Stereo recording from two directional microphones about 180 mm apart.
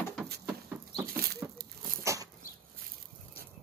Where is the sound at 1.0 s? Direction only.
55° right (ahead or behind).